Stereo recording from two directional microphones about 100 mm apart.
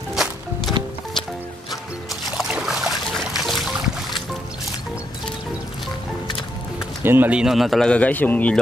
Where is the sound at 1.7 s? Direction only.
Centre (ahead or behind).